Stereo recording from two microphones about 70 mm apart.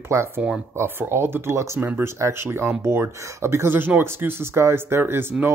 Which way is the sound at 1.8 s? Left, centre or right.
Right.